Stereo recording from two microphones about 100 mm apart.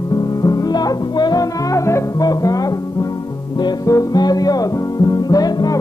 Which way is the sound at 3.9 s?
40° left (ahead or behind).